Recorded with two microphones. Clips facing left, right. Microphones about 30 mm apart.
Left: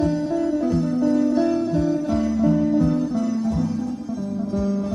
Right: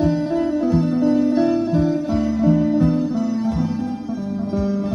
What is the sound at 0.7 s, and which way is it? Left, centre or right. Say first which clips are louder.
Music: right 3 dB; right.